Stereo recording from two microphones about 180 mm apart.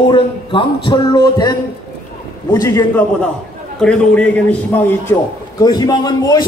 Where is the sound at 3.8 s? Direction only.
5° left (ahead or behind).